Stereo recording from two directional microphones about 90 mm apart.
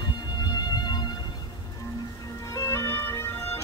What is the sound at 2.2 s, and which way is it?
Music, 40° left (ahead or behind).